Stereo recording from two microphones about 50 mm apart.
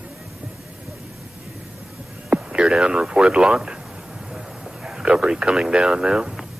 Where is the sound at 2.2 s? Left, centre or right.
Centre.